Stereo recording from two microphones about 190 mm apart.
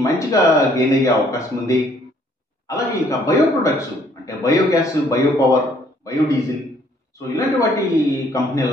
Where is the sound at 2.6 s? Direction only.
15° left (ahead or behind).